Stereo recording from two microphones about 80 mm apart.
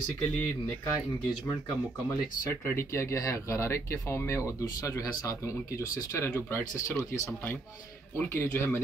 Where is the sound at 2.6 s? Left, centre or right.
Left.